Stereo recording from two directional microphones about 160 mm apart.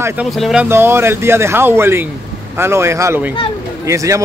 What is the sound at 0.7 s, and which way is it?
A man's voice, 15° right (ahead or behind).